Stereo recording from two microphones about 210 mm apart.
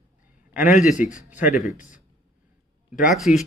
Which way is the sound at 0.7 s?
35° left (ahead or behind).